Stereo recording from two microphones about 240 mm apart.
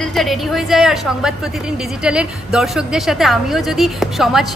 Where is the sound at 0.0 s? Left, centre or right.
Centre.